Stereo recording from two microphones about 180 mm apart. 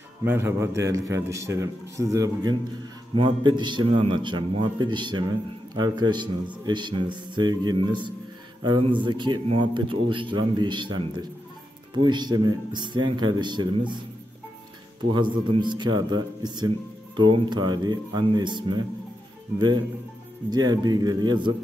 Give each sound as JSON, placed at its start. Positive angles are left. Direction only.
{"t": 0.2, "sound": "a man's voice", "side_deg": -15}
{"t": 15.1, "sound": "a man's voice", "side_deg": -25}
{"t": 20.4, "sound": "a man's voice", "side_deg": -20}